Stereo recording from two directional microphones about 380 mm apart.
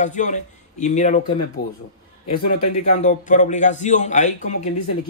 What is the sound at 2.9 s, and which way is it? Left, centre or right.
Speech, centre.